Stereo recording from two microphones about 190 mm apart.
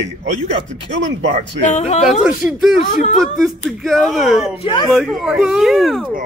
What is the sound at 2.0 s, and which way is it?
Speech, centre (ahead or behind).